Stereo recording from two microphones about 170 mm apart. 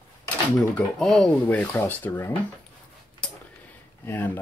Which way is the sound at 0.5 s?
Centre (ahead or behind).